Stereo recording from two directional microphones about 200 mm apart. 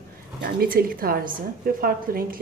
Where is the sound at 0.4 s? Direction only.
45° right (ahead or behind).